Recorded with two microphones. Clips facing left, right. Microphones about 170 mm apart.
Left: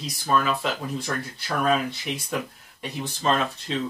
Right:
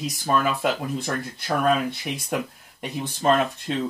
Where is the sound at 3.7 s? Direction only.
50° right (ahead or behind).